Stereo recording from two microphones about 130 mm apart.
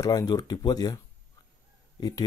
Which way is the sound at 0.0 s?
30° left (ahead or behind).